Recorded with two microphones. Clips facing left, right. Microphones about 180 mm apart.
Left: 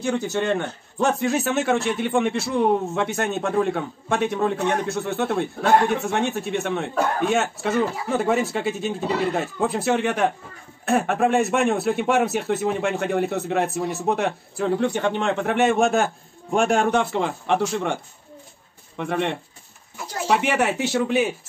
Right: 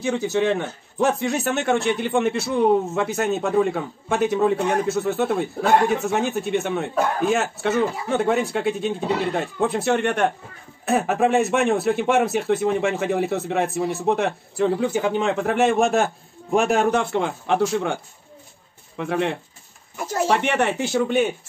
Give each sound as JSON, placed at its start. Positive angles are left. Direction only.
{"t": 0.0, "sound": "a man's voice", "side_deg": 0}